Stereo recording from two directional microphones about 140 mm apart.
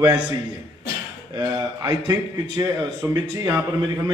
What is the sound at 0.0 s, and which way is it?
A man's voice, 30° right (ahead or behind).